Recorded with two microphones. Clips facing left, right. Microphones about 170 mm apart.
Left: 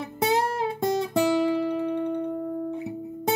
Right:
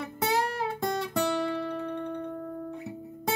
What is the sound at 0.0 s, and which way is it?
Guitar, 20° left (ahead or behind).